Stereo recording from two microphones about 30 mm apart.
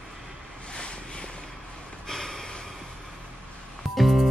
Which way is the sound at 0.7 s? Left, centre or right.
Left.